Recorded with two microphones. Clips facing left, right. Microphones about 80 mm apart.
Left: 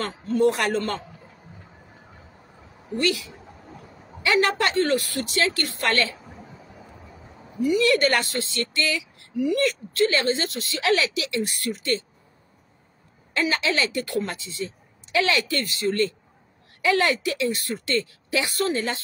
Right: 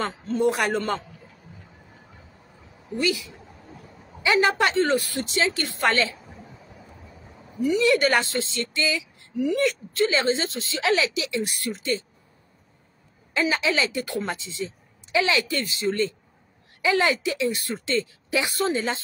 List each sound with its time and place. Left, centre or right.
0.0 s a woman's voice: centre
3.0 s a woman's voice: centre
7.6 s a woman's voice: right
13.3 s a woman's voice: centre